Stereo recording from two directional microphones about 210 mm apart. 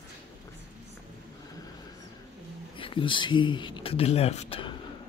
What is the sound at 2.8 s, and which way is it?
Speech, 25° left (ahead or behind).